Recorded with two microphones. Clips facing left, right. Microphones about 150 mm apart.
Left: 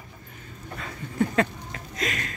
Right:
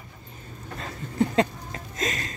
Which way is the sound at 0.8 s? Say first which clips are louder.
Right 1 dB; 30° right (ahead or behind).